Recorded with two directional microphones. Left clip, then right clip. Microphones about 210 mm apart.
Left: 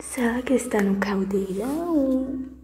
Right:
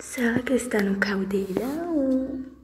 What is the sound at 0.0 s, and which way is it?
A woman's voice, centre (ahead or behind).